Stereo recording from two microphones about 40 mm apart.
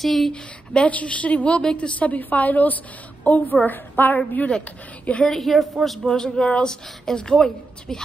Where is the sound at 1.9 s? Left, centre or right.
Left.